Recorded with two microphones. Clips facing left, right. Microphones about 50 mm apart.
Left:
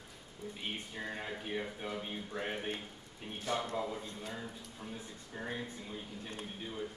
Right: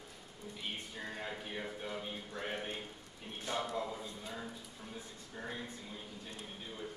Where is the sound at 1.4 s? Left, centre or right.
Centre.